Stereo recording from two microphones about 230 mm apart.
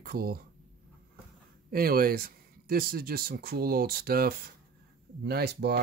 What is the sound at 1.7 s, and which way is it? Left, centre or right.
Speech, right.